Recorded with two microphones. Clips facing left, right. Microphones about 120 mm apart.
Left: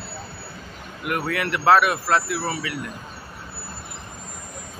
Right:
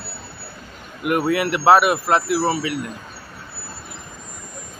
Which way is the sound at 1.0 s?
20° right (ahead or behind).